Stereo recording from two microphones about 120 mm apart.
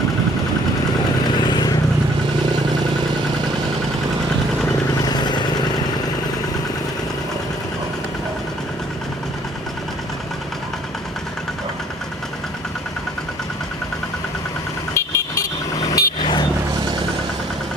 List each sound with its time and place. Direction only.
1.3 s vehicle: 35° left (ahead or behind)
5.0 s vehicle: 35° left (ahead or behind)
15.0 s vehicle: 25° left (ahead or behind)